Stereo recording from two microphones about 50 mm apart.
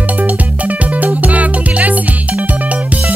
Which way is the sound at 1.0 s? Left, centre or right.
Right.